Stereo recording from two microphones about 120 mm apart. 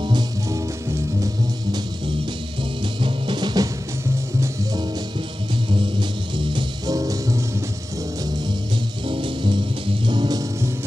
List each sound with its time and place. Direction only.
3.0 s music: 40° right (ahead or behind)
6.3 s music: 35° right (ahead or behind)
9.0 s music: 45° right (ahead or behind)